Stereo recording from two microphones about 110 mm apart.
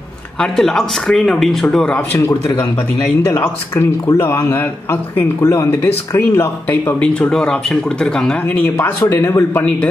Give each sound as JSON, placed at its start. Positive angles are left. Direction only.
{"t": 0.4, "sound": "speech", "side_deg": 5}
{"t": 2.1, "sound": "speech", "side_deg": 25}
{"t": 7.0, "sound": "speech", "side_deg": 10}
{"t": 8.6, "sound": "speech", "side_deg": 20}